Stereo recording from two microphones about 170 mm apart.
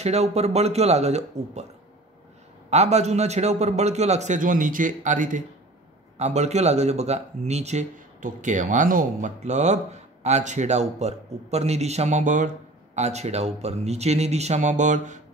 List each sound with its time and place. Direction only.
0.0 s speech: 40° right (ahead or behind)
2.7 s speech: 40° right (ahead or behind)